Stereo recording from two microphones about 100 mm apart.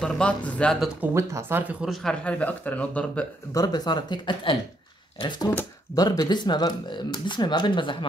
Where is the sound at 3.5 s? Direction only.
45° left (ahead or behind).